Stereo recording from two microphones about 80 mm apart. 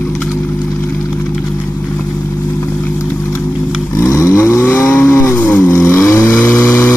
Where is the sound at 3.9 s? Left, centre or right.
Left.